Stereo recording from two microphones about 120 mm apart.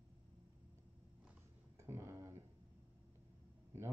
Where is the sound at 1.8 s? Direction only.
25° right (ahead or behind).